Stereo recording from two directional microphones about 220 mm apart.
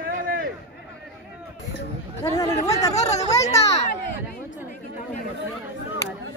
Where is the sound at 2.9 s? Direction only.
30° left (ahead or behind).